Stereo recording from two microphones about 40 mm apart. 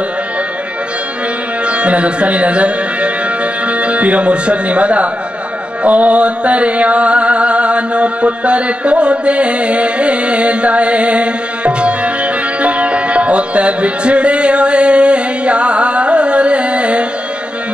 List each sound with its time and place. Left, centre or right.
1.7 s speech: right
5.9 s mantra: right
12.6 s music: right